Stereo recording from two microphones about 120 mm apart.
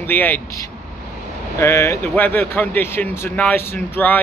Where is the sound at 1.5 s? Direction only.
25° left (ahead or behind).